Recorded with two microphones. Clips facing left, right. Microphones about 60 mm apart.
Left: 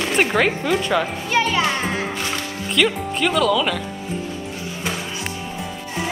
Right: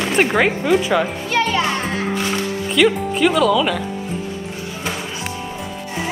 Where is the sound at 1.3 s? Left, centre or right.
Centre.